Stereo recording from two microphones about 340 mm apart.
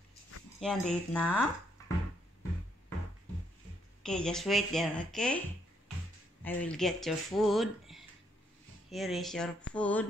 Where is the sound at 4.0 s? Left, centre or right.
Centre.